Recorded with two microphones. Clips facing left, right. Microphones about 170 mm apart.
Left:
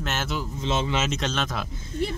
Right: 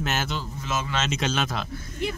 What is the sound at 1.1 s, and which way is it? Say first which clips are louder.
Speech: right 1 dB; 5° right (ahead or behind).